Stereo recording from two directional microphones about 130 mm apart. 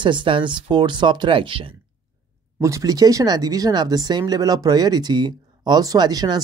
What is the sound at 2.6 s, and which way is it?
Speech, 25° right (ahead or behind).